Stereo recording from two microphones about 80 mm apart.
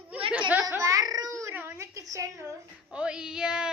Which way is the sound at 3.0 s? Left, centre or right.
Centre.